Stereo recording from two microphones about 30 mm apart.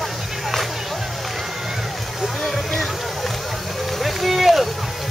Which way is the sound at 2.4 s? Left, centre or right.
Centre.